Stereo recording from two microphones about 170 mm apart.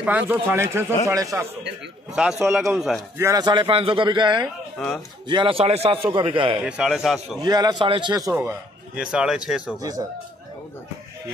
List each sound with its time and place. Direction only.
0.0 s a man's voice: 10° right (ahead or behind)
2.1 s a man's voice: 5° right (ahead or behind)
3.2 s a man's voice: 20° right (ahead or behind)
4.7 s a man's voice: 5° left (ahead or behind)
5.3 s speech: 30° right (ahead or behind)
6.6 s a man's voice: 5° right (ahead or behind)
7.3 s a man's voice: 25° right (ahead or behind); by 9.8 s 5° right (ahead or behind)
9.8 s a man's voice: 20° right (ahead or behind)